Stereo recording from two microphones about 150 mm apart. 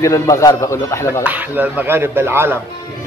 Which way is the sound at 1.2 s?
10° right (ahead or behind).